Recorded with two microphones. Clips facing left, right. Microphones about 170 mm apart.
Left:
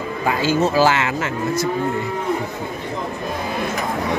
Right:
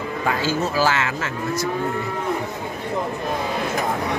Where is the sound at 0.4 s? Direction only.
20° left (ahead or behind).